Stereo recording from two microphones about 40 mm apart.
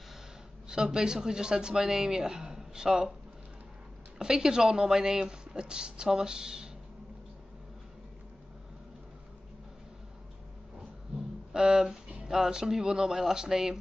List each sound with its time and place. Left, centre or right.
0.7 s speech: centre
4.2 s speech: centre
11.5 s speech: centre